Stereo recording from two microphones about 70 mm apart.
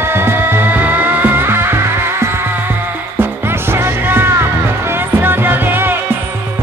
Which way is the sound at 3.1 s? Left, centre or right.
Right.